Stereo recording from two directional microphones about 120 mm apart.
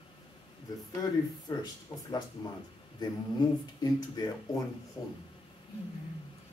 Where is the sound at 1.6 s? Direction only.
35° left (ahead or behind).